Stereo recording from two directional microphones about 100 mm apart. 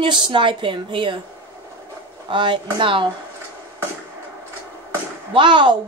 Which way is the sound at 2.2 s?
55° right (ahead or behind).